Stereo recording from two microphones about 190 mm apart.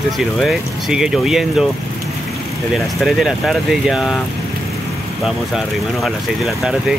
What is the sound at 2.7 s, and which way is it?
Speech, centre (ahead or behind).